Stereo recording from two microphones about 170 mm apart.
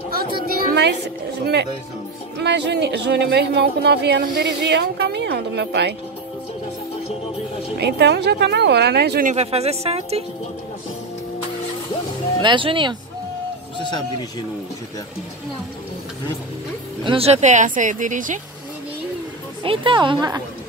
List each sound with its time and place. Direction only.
0.1 s a sound: 60° right (ahead or behind); by 1.7 s 85° right
2.3 s speech: 90° right
7.8 s a woman's voice: 80° right
9.2 s speech: 40° right (ahead or behind)
12.4 s a woman's voice: 30° right (ahead or behind)
17.0 s speech: 35° right (ahead or behind); by 18.4 s 50° right (ahead or behind)
19.6 s a woman's voice: 30° right (ahead or behind)